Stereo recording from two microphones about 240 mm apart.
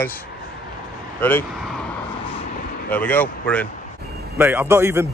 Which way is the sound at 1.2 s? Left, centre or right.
Centre.